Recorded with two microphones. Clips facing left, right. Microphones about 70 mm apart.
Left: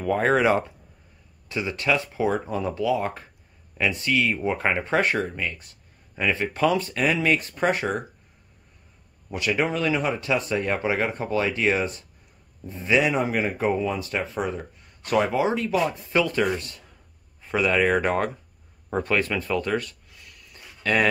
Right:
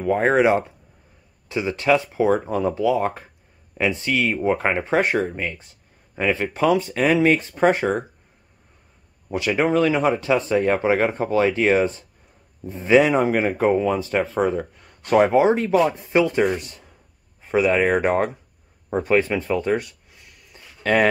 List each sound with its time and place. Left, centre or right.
0.0 s speech: centre
7.1 s speech: right
7.3 s speech: right
9.3 s speech: right
13.9 s speech: right
18.9 s a sound: centre